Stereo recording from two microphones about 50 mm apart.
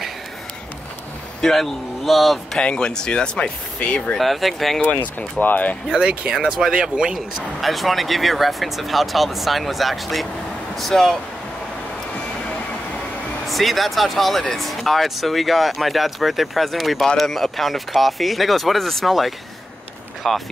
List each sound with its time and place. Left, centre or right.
1.4 s speech: centre
2.6 s speech: centre
4.2 s speech: centre
5.4 s speech: left
5.9 s speech: centre
7.6 s speech: centre
13.5 s speech: centre